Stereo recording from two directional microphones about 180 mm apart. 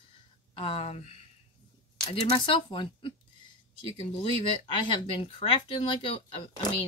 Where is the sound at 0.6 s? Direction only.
30° left (ahead or behind).